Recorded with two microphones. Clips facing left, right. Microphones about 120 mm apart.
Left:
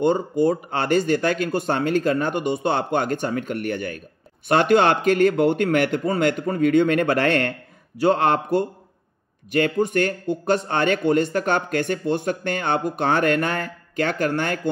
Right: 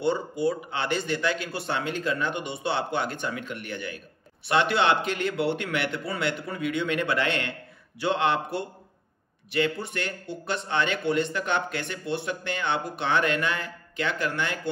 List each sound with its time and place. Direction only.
0.0 s speech: 45° left (ahead or behind)